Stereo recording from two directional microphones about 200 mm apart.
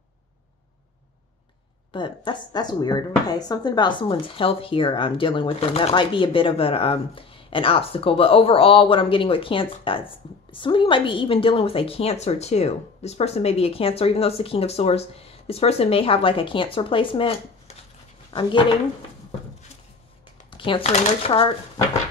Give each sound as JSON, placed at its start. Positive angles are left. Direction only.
{"t": 1.9, "sound": "speech", "side_deg": 25}
{"t": 20.5, "sound": "speech", "side_deg": 25}